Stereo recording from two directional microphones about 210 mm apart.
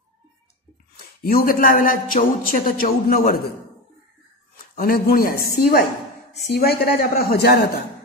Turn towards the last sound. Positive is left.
turn(degrees=50)  # may be behind; listen again after turning